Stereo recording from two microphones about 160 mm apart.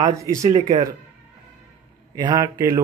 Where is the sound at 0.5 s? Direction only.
40° right (ahead or behind).